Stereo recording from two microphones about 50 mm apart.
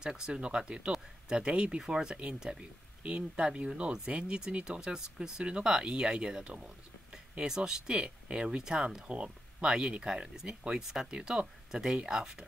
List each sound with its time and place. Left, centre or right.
0.0 s speech: centre